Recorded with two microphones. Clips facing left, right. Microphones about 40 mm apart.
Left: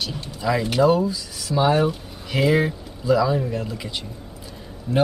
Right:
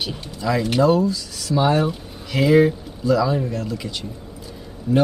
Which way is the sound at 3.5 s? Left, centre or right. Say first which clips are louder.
Right 1 dB; centre.